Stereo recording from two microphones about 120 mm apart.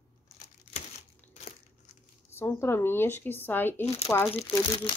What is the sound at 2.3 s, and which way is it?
Speech, 20° left (ahead or behind).